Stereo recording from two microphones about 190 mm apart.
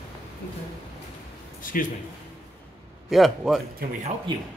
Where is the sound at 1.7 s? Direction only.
45° left (ahead or behind).